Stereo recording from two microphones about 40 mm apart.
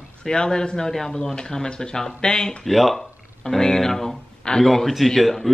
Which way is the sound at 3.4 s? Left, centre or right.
Centre.